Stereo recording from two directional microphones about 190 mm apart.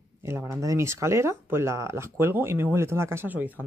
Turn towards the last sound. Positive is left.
turn(degrees=-10)  # may be behind; listen again after turning